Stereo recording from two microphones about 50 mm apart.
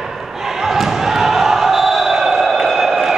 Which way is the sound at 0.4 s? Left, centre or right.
Centre.